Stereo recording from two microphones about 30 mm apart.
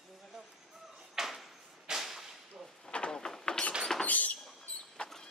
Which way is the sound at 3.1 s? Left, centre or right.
Left.